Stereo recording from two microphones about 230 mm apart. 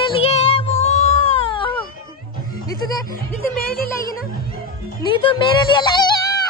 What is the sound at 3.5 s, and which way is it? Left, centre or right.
Music, left.